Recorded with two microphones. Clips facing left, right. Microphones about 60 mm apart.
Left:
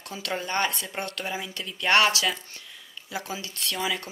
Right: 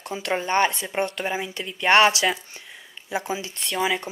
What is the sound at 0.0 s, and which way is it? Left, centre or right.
Speech, right.